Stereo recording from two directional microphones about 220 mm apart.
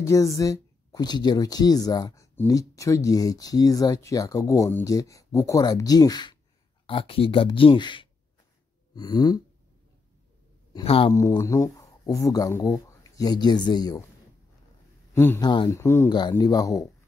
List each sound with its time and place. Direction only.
0.0 s speech: 15° left (ahead or behind)
10.7 s speech: 25° left (ahead or behind)
11.1 s speech: 15° left (ahead or behind)
15.1 s speech: 10° left (ahead or behind)